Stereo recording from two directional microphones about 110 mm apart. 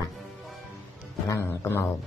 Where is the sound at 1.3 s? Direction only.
25° left (ahead or behind).